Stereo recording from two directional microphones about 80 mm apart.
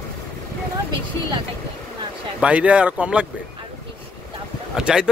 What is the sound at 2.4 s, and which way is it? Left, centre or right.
Speech, centre.